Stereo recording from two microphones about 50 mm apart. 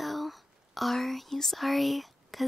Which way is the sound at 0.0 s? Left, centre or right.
Centre.